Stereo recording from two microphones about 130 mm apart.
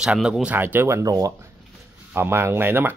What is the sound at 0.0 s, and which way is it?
Speech, 5° right (ahead or behind).